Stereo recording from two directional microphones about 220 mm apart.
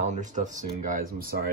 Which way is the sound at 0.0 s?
35° right (ahead or behind).